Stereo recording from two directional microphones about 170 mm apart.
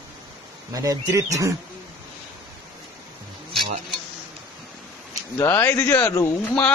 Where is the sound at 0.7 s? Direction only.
20° right (ahead or behind).